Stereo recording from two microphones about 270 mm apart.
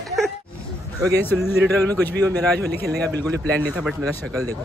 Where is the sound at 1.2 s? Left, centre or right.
Centre.